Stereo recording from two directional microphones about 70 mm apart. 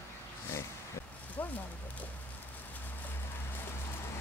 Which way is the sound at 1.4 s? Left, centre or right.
Left.